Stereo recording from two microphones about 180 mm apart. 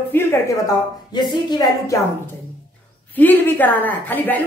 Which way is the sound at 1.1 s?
25° left (ahead or behind).